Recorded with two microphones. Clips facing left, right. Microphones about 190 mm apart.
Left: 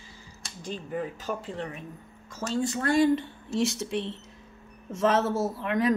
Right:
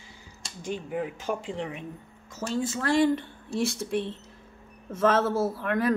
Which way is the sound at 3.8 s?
55° right (ahead or behind).